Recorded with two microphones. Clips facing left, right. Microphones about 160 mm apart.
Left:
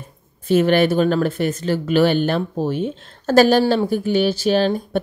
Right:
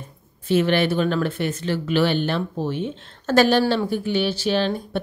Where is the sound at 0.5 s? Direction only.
45° left (ahead or behind).